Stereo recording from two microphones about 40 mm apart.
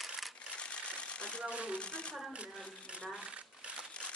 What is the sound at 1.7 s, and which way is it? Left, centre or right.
Speech, left.